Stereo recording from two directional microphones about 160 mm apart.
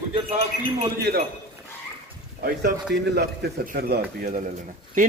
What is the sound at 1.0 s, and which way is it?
Speech, 75° right (ahead or behind).